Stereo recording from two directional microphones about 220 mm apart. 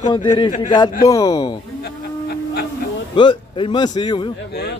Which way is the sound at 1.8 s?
45° left (ahead or behind).